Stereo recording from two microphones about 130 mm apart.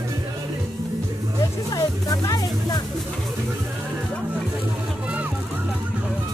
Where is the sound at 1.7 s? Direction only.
30° left (ahead or behind).